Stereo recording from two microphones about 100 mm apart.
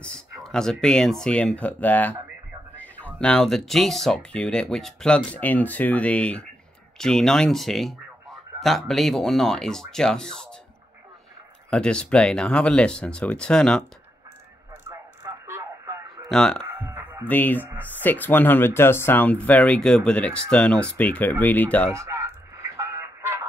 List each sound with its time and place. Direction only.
0.0 s speech: 5° left (ahead or behind)
2.7 s a sound: 15° left (ahead or behind)
3.2 s speech: 10° left (ahead or behind)
11.7 s speech: 10° left (ahead or behind)
14.7 s a sound: 25° right (ahead or behind)
16.3 s speech: 5° left (ahead or behind)
16.6 s music: 25° right (ahead or behind)
17.3 s speech: 20° left (ahead or behind)
21.9 s a sound: 30° right (ahead or behind)